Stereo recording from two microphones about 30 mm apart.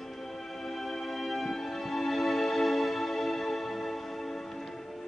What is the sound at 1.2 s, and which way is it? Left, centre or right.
Music, centre.